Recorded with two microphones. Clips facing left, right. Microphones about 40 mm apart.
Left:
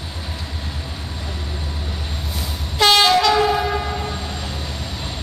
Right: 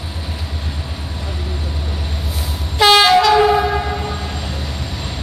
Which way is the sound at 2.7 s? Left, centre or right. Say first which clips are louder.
Right 4 dB; centre.